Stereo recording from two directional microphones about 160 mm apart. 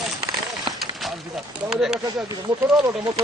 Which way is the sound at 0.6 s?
Centre (ahead or behind).